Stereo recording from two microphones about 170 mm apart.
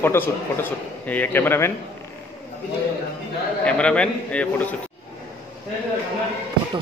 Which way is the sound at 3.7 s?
5° left (ahead or behind).